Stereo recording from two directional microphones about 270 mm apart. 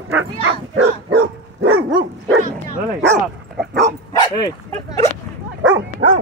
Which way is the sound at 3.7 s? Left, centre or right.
Right.